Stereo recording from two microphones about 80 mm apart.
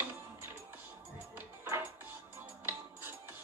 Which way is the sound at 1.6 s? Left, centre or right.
Right.